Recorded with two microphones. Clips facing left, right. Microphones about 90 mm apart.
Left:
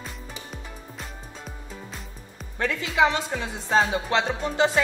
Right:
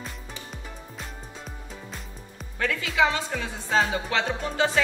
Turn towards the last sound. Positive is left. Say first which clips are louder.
# left 2 dB
turn(degrees=20)  # may be behind; listen again after turning